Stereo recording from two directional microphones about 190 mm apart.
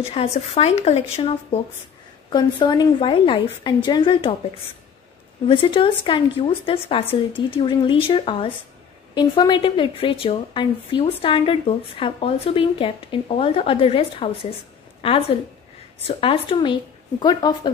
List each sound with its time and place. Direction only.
0.1 s a woman's voice: 30° left (ahead or behind)
5.5 s a woman's voice: 30° left (ahead or behind)